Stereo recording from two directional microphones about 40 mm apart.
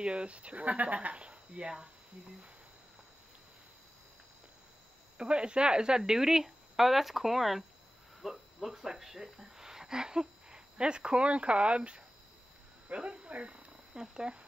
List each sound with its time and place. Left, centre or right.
0.0 s speech: right
5.1 s speech: right
13.4 s purr: right
14.1 s speech: centre